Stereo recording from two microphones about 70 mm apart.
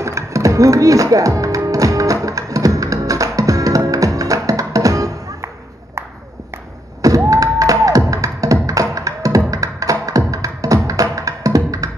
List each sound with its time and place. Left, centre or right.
0.0 s music: right
7.2 s music: right